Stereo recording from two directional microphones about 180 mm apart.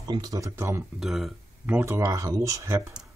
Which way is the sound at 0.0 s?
20° right (ahead or behind).